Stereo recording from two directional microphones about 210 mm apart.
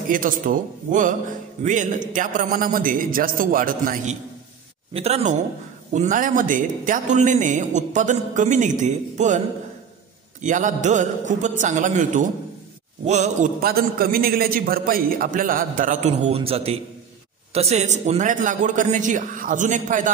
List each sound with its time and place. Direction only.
0.1 s speech: 40° right (ahead or behind)
10.4 s speech: 35° right (ahead or behind)